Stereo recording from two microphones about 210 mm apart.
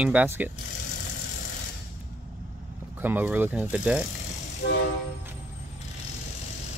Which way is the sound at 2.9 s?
10° right (ahead or behind).